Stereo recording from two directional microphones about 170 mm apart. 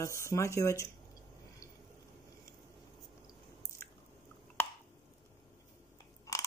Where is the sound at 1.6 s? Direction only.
20° left (ahead or behind).